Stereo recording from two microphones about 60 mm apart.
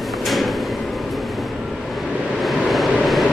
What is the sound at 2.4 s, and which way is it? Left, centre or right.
Vehicle, centre.